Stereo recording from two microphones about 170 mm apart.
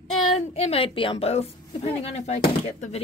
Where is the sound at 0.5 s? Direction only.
35° left (ahead or behind).